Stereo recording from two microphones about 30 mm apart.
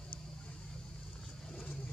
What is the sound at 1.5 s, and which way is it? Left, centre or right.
Vehicle, left.